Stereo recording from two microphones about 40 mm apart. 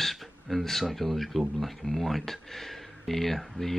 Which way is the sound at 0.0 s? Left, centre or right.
Centre.